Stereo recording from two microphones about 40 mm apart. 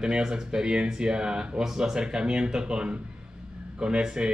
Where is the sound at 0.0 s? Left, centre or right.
Right.